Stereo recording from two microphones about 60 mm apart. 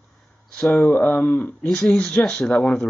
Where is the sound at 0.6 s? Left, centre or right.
Left.